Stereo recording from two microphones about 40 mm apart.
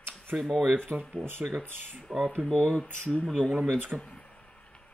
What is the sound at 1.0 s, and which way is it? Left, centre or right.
Speech, left.